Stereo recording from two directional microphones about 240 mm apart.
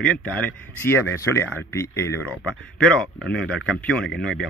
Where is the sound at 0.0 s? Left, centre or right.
Centre.